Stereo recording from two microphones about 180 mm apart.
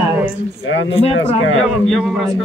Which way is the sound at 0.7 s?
90° left.